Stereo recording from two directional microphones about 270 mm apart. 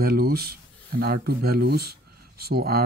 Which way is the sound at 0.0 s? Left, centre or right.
Right.